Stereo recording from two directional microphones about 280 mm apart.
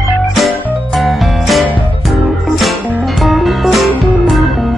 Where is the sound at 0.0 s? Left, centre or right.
Centre.